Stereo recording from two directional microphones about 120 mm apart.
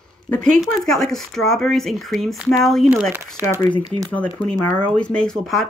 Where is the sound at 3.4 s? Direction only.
20° right (ahead or behind).